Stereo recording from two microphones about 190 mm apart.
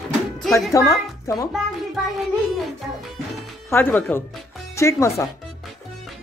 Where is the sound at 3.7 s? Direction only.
10° left (ahead or behind).